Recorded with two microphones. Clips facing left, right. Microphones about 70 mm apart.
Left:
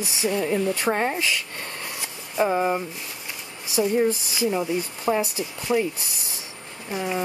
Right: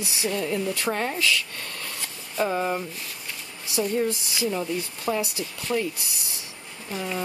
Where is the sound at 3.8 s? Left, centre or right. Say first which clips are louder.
Left 4 dB; left.